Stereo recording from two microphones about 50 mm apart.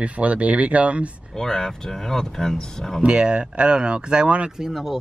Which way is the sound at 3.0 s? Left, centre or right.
Right.